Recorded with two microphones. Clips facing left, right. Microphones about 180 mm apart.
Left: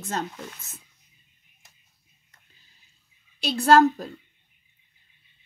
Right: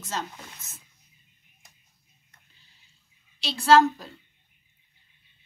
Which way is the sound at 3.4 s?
50° left (ahead or behind).